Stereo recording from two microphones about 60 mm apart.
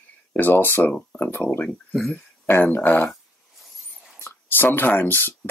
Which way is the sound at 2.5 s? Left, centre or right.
Left.